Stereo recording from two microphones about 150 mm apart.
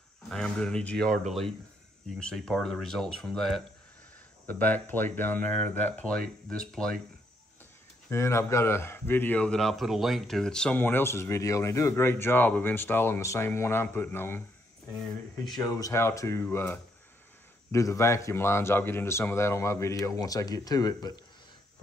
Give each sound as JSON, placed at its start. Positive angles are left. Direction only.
{"t": 0.3, "sound": "speech", "side_deg": 5}
{"t": 4.5, "sound": "speech", "side_deg": 10}
{"t": 8.1, "sound": "speech", "side_deg": 20}
{"t": 15.6, "sound": "speech", "side_deg": 20}